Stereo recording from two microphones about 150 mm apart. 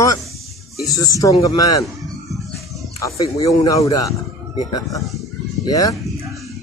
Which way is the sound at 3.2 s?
25° left (ahead or behind).